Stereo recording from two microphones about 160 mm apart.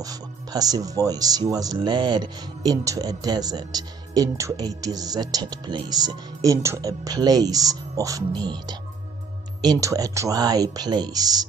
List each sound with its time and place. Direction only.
0.0 s speech: 25° right (ahead or behind)